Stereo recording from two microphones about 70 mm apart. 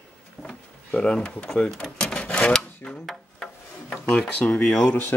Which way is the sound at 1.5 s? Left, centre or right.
Centre.